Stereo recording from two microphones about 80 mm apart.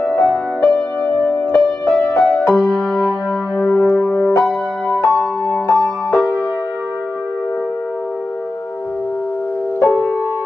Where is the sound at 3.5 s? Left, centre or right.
Centre.